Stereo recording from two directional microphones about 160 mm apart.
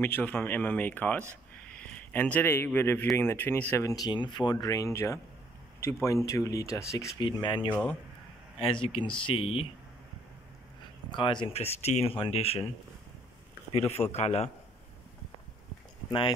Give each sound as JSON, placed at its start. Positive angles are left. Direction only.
{"t": 0.0, "sound": "a man's voice", "side_deg": 10}
{"t": 7.2, "sound": "speech", "side_deg": 30}
{"t": 7.7, "sound": "speech", "side_deg": 10}
{"t": 8.5, "sound": "speech", "side_deg": 35}
{"t": 11.1, "sound": "speech", "side_deg": 30}
{"t": 13.7, "sound": "speech", "side_deg": 40}
{"t": 16.1, "sound": "speech", "side_deg": 30}